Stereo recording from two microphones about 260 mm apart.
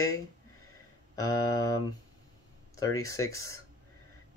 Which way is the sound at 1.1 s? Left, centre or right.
Centre.